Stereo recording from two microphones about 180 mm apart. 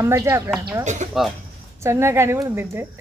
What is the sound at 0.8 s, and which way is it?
Speech, 40° right (ahead or behind).